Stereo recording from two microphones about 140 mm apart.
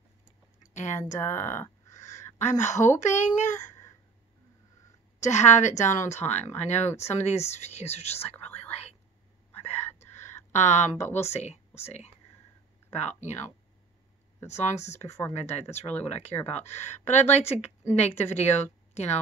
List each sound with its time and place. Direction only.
0.6 s a sound: 60° left (ahead or behind)
1.2 s speech: 15° left (ahead or behind)
2.0 s a sound: 60° left (ahead or behind)
2.3 s a woman's voice: 60° left (ahead or behind)
5.2 s a woman's voice: 55° left (ahead or behind)
10.1 s a sound: 55° left (ahead or behind)
11.1 s a woman's voice: 50° left (ahead or behind)
15.8 s speech: 10° left (ahead or behind)
16.1 s speech: 50° left (ahead or behind)